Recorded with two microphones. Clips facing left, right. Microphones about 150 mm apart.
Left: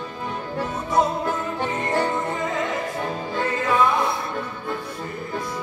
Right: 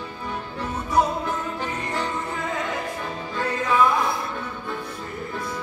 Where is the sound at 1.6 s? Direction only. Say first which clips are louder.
Left 5 dB; 60° left (ahead or behind).